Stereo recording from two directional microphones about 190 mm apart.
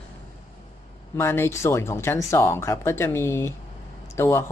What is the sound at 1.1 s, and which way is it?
Speech, 10° left (ahead or behind).